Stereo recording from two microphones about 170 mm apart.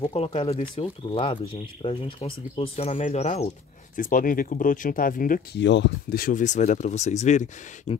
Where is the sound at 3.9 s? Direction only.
55° left (ahead or behind).